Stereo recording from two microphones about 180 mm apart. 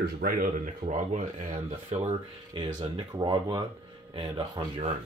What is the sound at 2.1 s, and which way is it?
Speech, 25° right (ahead or behind).